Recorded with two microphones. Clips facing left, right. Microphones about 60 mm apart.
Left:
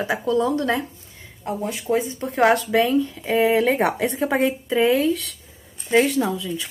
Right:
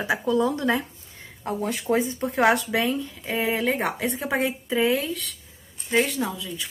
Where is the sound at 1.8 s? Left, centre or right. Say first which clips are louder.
Left 1 dB; right.